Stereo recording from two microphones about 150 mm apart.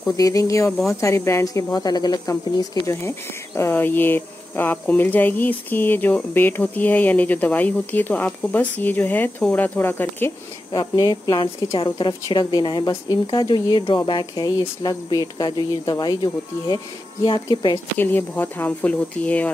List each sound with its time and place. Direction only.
0.1 s speech: 25° left (ahead or behind)
10.7 s speech: 25° left (ahead or behind)
17.9 s speech: 15° left (ahead or behind)